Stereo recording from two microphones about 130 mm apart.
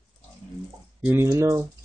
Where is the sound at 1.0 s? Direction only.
10° right (ahead or behind).